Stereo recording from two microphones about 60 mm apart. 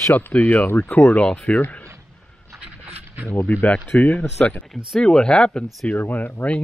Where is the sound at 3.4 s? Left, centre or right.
Left.